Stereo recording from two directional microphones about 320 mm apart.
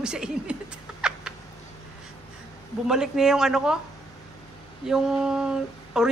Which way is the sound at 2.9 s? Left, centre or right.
Centre.